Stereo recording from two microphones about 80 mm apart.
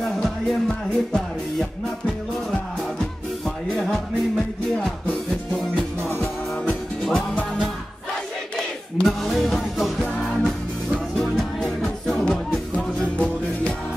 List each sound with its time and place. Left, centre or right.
0.0 s music: centre
3.4 s music: centre
6.0 s music: left
6.6 s music: centre
8.5 s music: centre